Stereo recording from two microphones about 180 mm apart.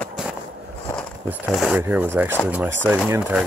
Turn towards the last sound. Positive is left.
turn(degrees=-5)  # may be behind; listen again after turning